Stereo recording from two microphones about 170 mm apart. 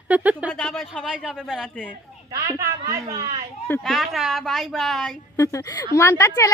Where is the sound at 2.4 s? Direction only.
20° right (ahead or behind).